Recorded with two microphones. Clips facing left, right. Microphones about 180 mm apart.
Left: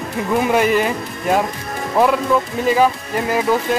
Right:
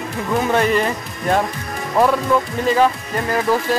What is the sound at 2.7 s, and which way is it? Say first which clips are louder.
Speech: left 1 dB; 10° left (ahead or behind).